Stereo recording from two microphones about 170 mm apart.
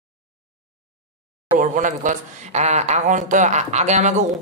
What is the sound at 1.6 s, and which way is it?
A man's voice, 50° right (ahead or behind).